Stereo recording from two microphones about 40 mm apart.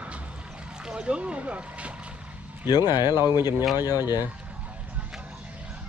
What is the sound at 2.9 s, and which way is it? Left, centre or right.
Speech, right.